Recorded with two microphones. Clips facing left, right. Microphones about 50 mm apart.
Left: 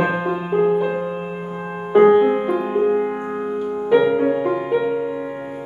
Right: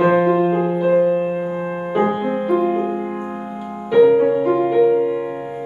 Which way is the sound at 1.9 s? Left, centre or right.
Centre.